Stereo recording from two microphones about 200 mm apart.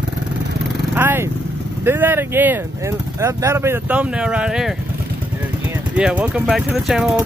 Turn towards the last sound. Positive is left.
turn(degrees=-5)  # may be behind; listen again after turning